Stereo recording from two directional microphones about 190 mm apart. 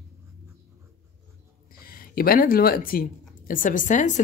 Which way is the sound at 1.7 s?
50° left (ahead or behind).